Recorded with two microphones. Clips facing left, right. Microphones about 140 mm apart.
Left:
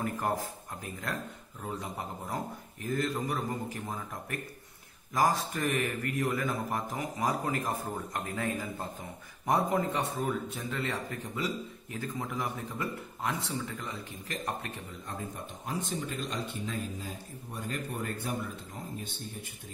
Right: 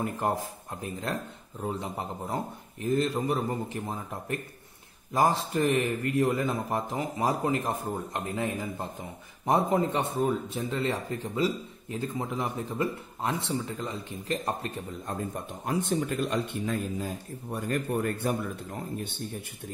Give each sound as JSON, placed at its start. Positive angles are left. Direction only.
{"t": 0.0, "sound": "a man's voice", "side_deg": -25}
{"t": 15.6, "sound": "speech", "side_deg": -60}